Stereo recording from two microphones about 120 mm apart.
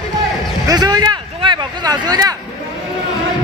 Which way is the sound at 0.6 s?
30° right (ahead or behind).